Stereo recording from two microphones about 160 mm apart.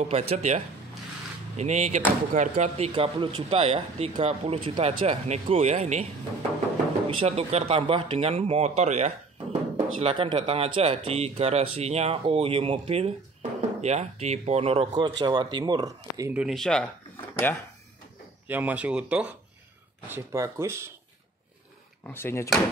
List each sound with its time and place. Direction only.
0.0 s speech: 40° right (ahead or behind)
1.6 s speech: 45° right (ahead or behind)
7.2 s speech: 40° right (ahead or behind)
16.2 s speech: 15° right (ahead or behind)
16.4 s speech: 5° left (ahead or behind)
18.5 s speech: 10° right (ahead or behind)
20.1 s speech: 15° right (ahead or behind)
22.0 s speech: 15° left (ahead or behind)